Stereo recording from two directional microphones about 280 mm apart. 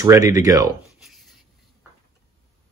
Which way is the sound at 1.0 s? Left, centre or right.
Centre.